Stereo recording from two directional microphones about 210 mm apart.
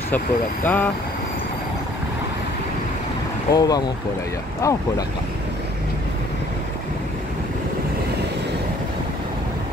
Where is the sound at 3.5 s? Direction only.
20° left (ahead or behind).